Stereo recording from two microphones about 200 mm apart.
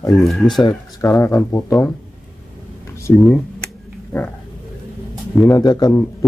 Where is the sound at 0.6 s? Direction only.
15° left (ahead or behind).